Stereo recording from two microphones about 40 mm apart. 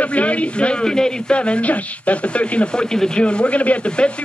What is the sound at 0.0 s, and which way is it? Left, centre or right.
Speech, left.